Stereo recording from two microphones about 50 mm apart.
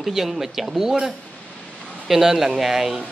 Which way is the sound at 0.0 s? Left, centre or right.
Centre.